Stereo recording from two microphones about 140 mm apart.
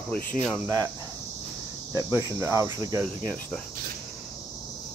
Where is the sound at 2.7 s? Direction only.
30° right (ahead or behind).